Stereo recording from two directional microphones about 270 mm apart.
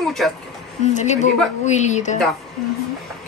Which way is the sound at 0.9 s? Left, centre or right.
Left.